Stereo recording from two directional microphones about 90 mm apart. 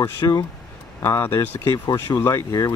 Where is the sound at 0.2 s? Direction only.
50° left (ahead or behind).